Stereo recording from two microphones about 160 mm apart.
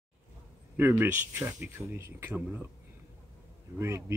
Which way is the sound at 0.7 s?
15° right (ahead or behind).